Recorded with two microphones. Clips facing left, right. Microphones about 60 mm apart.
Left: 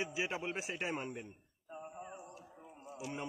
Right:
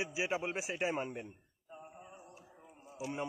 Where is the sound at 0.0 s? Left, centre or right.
Centre.